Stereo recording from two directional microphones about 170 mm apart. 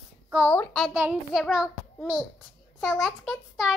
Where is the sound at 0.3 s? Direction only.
5° right (ahead or behind).